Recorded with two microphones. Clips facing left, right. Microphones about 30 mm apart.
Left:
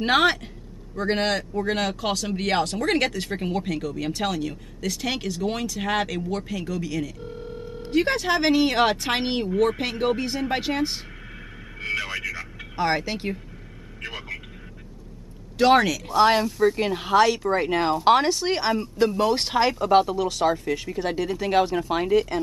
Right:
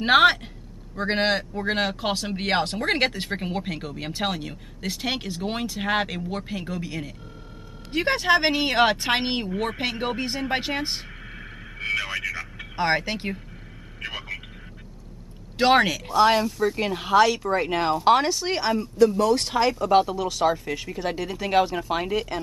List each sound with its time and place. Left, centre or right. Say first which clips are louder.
0.1 s speech: right 4 dB; centre
2.4 s speech: even; right
5.8 s speech: right 2 dB; centre
7.9 s speech: right 1 dB; centre
11.8 s vehicle: right 1 dB; centre
12.7 s speech: right 1 dB; centre
14.0 s vehicle: right 1 dB; centre
15.5 s speech: left 1 dB; right
16.1 s speech: left 1 dB; centre
18.9 s speech: right 4 dB; left; by 22.4 s centre